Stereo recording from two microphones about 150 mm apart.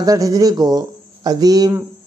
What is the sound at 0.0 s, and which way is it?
Speech, 25° right (ahead or behind).